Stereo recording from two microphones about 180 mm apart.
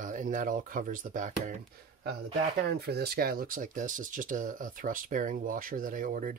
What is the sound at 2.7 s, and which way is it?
Speech, 65° right (ahead or behind).